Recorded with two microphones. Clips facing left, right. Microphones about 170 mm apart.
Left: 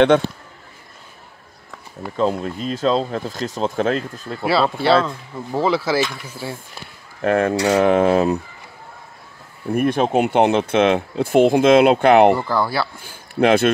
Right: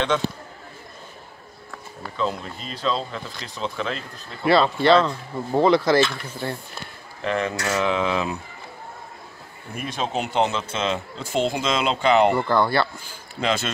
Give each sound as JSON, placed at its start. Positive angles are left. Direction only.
{"t": 2.1, "sound": "speech", "side_deg": 45}
{"t": 4.5, "sound": "speech", "side_deg": 5}
{"t": 7.2, "sound": "speech", "side_deg": 50}
{"t": 9.8, "sound": "speech", "side_deg": 55}
{"t": 12.4, "sound": "speech", "side_deg": 5}
{"t": 13.0, "sound": "speech", "side_deg": 55}